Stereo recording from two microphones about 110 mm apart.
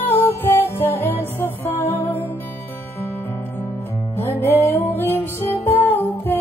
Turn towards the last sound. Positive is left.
turn(degrees=20)  # may be behind; listen again after turning